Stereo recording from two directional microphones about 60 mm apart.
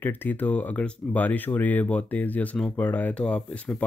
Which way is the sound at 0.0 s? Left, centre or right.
Left.